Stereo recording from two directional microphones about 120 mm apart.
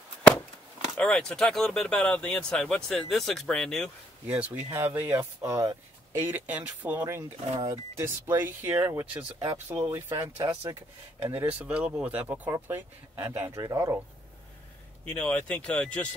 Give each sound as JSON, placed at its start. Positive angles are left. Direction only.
{"t": 0.9, "sound": "speech", "side_deg": 5}
{"t": 4.3, "sound": "speech", "side_deg": -10}
{"t": 6.2, "sound": "speech", "side_deg": -15}
{"t": 9.1, "sound": "speech", "side_deg": -45}
{"t": 9.7, "sound": "speech", "side_deg": -20}
{"t": 15.0, "sound": "speech", "side_deg": 10}